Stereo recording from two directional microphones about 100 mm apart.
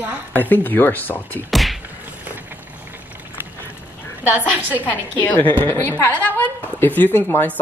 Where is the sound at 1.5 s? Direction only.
Centre (ahead or behind).